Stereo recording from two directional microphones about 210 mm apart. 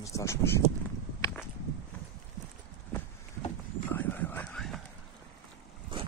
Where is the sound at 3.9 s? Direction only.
10° left (ahead or behind).